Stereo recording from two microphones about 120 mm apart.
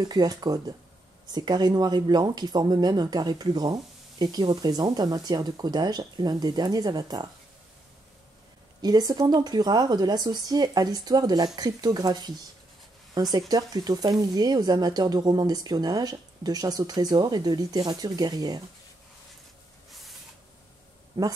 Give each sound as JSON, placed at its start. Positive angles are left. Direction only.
{"t": 0.0, "sound": "speech", "side_deg": -35}
{"t": 8.8, "sound": "speech", "side_deg": -35}
{"t": 19.9, "sound": "spray", "side_deg": 0}
{"t": 21.2, "sound": "speech", "side_deg": -30}